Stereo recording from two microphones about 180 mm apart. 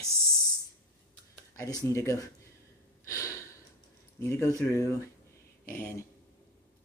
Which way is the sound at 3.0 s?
15° left (ahead or behind).